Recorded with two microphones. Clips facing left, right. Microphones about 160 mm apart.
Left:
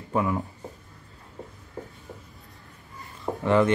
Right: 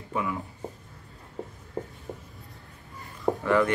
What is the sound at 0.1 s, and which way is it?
Speech, 40° left (ahead or behind).